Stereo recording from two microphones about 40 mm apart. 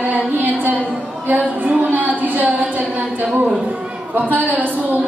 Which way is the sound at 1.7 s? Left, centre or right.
Right.